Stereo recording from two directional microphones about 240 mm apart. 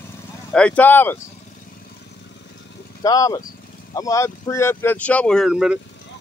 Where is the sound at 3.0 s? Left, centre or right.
Centre.